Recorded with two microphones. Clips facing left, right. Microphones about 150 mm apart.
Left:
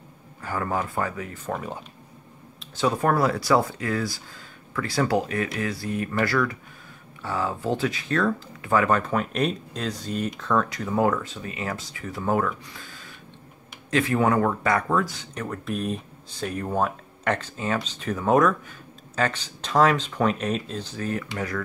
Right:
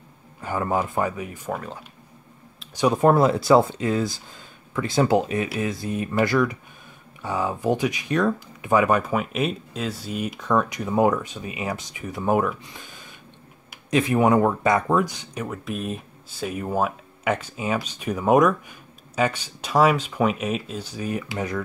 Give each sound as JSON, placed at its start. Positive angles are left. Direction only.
{"t": 0.4, "sound": "speech", "side_deg": -20}
{"t": 2.7, "sound": "speech", "side_deg": -15}
{"t": 15.4, "sound": "speech", "side_deg": -5}